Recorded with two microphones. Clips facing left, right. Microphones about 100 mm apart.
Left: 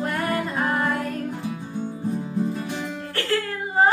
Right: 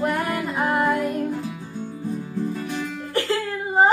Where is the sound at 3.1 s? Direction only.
20° right (ahead or behind).